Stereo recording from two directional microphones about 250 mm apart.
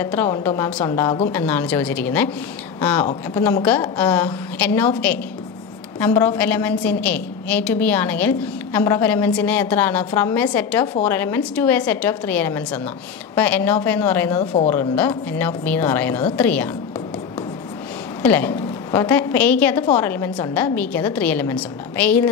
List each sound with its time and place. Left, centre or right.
0.0 s a woman's voice: centre
1.3 s a woman's voice: centre
18.2 s a woman's voice: centre